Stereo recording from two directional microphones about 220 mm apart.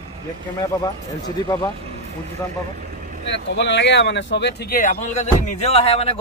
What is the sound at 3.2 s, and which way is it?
Speech, 55° left (ahead or behind).